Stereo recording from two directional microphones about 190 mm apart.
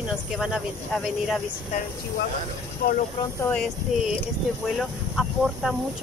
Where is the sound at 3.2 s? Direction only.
15° left (ahead or behind).